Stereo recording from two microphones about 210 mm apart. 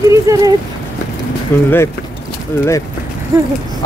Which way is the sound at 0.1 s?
15° right (ahead or behind).